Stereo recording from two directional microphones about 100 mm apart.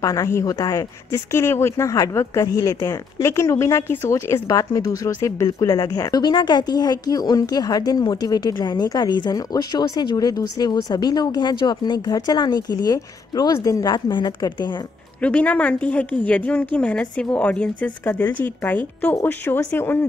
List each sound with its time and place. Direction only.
0.0 s speech: 35° left (ahead or behind)
15.2 s a woman's voice: 15° left (ahead or behind)